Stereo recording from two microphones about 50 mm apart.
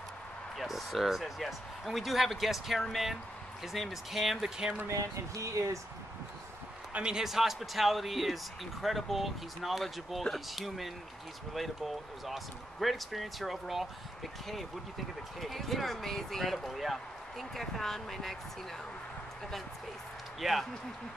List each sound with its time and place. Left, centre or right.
0.6 s speech: centre
4.8 s speech: right
6.9 s speech: centre
7.2 s speech: centre
15.4 s speech: centre
20.3 s speech: centre